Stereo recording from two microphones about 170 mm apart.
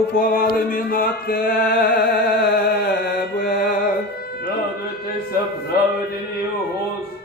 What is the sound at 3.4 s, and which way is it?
Music, 55° left (ahead or behind).